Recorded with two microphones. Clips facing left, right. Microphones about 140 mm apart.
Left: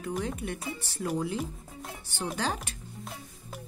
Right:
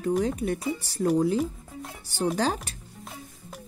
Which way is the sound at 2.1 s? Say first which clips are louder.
Right 7 dB; 35° right (ahead or behind).